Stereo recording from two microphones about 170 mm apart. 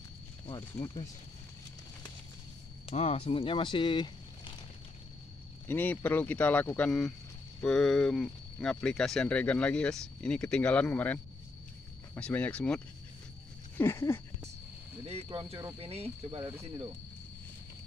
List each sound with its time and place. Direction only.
0.5 s speech: 25° left (ahead or behind)
2.9 s speech: 35° left (ahead or behind)
5.7 s speech: 10° left (ahead or behind)
12.2 s speech: 5° left (ahead or behind)
15.0 s speech: 30° right (ahead or behind)